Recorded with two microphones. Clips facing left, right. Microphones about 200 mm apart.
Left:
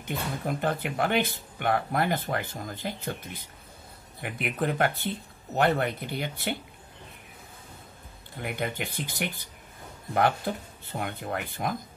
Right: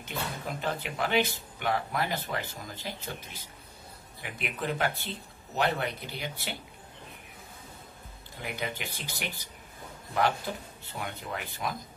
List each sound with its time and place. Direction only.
0.0 s speech: 55° left (ahead or behind)
4.2 s speech: 55° left (ahead or behind)
8.4 s speech: 55° left (ahead or behind)